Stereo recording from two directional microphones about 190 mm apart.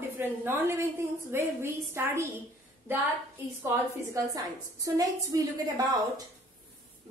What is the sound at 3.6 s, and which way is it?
A woman's voice, 15° right (ahead or behind).